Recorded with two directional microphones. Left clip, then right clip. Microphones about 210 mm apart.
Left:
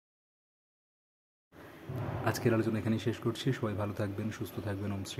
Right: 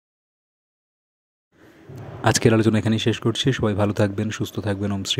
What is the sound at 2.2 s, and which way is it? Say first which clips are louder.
Speech: right 13 dB; 40° right (ahead or behind).